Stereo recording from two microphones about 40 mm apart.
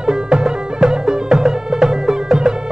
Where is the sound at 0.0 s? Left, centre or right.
Centre.